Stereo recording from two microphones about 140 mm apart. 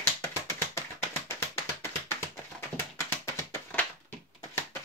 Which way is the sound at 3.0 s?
20° left (ahead or behind).